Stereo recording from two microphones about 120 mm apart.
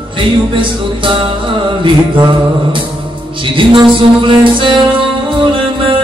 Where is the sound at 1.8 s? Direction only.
45° right (ahead or behind).